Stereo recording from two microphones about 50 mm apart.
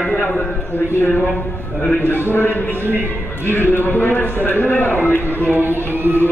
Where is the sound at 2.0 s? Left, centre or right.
Left.